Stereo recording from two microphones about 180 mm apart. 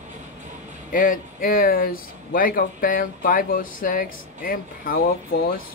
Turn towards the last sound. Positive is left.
turn(degrees=55)  # may be behind; listen again after turning